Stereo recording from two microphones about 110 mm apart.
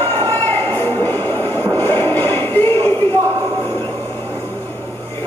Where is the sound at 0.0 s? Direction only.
20° left (ahead or behind).